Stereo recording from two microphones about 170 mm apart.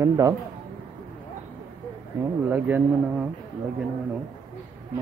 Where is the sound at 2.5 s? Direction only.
10° right (ahead or behind).